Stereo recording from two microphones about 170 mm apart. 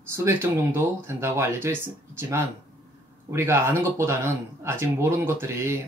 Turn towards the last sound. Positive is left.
turn(degrees=-15)  # may be behind; listen again after turning